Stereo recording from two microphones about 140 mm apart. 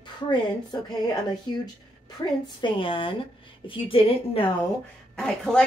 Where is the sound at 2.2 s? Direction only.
30° left (ahead or behind).